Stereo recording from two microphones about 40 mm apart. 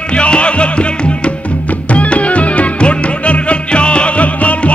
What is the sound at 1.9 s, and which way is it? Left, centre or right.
Music, left.